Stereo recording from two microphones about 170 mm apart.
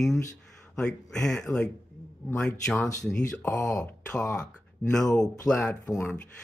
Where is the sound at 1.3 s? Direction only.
5° left (ahead or behind).